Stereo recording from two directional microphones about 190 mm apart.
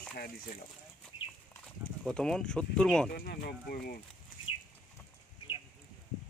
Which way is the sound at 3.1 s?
55° left (ahead or behind).